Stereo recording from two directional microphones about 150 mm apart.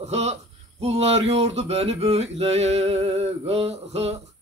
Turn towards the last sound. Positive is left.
turn(degrees=-45)  # may be behind; listen again after turning